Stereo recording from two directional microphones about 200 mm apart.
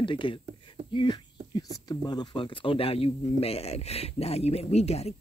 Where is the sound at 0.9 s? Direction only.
25° left (ahead or behind).